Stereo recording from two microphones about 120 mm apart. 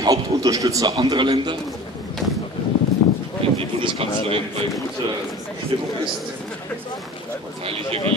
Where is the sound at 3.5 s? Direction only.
50° right (ahead or behind).